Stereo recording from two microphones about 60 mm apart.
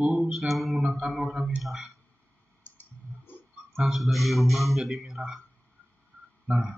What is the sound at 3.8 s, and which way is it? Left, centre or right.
A man's voice, centre.